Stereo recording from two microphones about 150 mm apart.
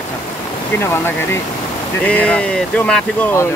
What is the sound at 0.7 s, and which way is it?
Speech, 15° left (ahead or behind).